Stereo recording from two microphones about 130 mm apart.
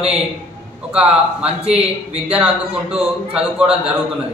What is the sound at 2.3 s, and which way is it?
A man's voice, 10° right (ahead or behind).